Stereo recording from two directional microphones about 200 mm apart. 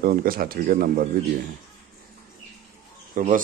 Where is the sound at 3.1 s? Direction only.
40° right (ahead or behind).